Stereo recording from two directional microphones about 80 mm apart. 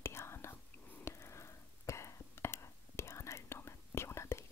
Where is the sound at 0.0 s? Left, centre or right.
Left.